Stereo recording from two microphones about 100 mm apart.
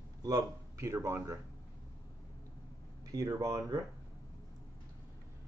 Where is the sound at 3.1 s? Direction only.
35° right (ahead or behind).